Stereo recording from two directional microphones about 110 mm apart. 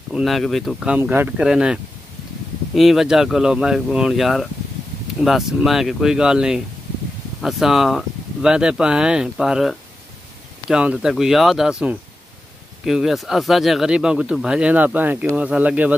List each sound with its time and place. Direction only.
0.1 s speech: centre (ahead or behind)
0.9 s speech: 15° right (ahead or behind)
1.4 s speech: 5° right (ahead or behind)